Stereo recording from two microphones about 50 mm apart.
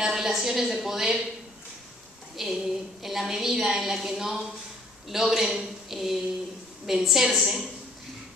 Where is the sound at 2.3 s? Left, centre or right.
Centre.